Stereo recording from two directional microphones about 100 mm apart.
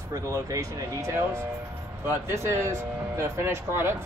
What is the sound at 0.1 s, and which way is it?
Speech, 35° right (ahead or behind).